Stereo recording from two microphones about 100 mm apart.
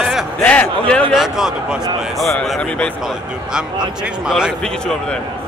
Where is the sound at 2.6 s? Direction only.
10° left (ahead or behind).